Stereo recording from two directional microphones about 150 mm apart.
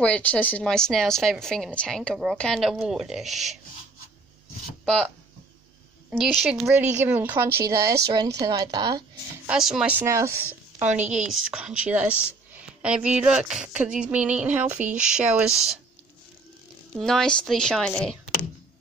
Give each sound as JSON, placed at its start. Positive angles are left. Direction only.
{"t": 0.0, "sound": "speech", "side_deg": 10}
{"t": 4.8, "sound": "speech", "side_deg": 5}
{"t": 6.1, "sound": "speech", "side_deg": 0}
{"t": 7.1, "sound": "a sound", "side_deg": -15}
{"t": 8.1, "sound": "a woman's voice", "side_deg": -25}
{"t": 9.5, "sound": "a sound", "side_deg": -5}
{"t": 11.1, "sound": "a sound", "side_deg": -5}
{"t": 15.0, "sound": "speech", "side_deg": -5}
{"t": 17.0, "sound": "speech", "side_deg": 5}